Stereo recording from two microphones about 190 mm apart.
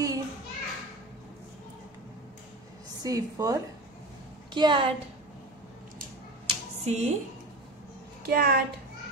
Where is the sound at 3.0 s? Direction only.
20° right (ahead or behind).